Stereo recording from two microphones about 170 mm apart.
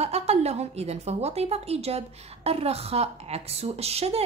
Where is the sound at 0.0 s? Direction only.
40° right (ahead or behind).